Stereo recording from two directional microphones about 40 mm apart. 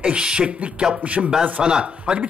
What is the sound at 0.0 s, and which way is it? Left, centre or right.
Speech, right.